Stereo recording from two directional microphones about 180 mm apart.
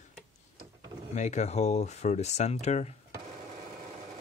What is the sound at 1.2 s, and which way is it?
Speech, 40° left (ahead or behind).